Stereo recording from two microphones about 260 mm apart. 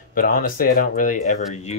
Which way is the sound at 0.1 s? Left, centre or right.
Left.